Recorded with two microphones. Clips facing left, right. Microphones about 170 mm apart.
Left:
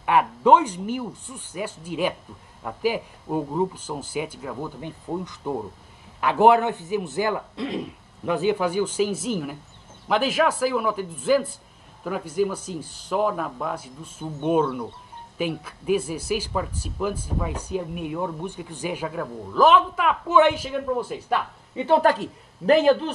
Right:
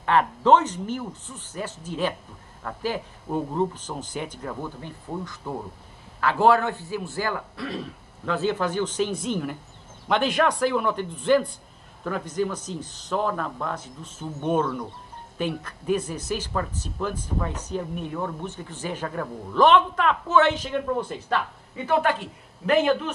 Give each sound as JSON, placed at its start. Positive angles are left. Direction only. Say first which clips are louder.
{"t": 0.0, "sound": "speech", "louder": "left 1 dB", "side_deg": 10}
{"t": 4.7, "sound": "a man's voice", "louder": "left 3 dB", "side_deg": 20}
{"t": 21.7, "sound": "a man's voice", "louder": "left 4 dB", "side_deg": 30}